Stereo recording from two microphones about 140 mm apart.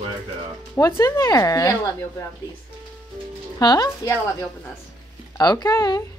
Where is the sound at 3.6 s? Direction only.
30° left (ahead or behind).